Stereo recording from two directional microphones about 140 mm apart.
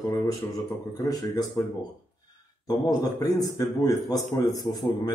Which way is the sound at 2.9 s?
25° left (ahead or behind).